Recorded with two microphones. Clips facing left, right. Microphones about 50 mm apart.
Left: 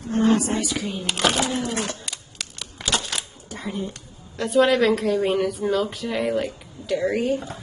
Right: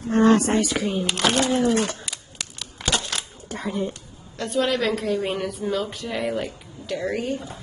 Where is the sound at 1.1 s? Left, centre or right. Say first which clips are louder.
Left 1 dB; centre.